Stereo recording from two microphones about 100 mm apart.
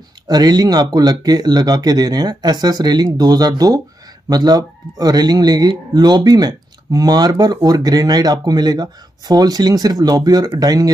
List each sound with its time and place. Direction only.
0.3 s speech: 45° right (ahead or behind)